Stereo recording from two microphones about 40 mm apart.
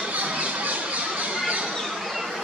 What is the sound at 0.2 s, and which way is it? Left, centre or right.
Squawk, right.